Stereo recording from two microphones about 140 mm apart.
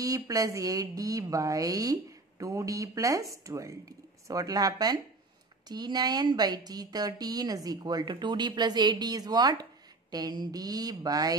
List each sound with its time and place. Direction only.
0.0 s a woman's voice: 25° right (ahead or behind)